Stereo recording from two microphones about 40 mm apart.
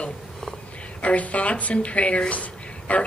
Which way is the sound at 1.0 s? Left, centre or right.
Left.